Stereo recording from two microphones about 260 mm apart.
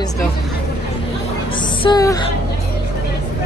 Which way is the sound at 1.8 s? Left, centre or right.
Centre.